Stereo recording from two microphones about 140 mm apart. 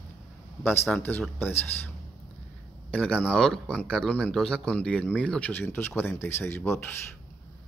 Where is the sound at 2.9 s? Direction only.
10° left (ahead or behind).